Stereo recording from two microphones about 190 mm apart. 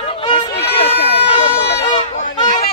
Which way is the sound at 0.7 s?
30° left (ahead or behind).